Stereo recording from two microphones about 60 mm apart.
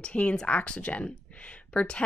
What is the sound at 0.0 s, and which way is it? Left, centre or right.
Speech, centre.